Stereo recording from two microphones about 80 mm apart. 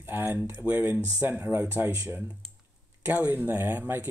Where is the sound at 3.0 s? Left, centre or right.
Right.